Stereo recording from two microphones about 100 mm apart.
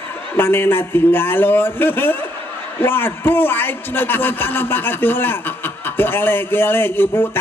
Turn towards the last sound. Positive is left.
turn(degrees=20)  # may be behind; listen again after turning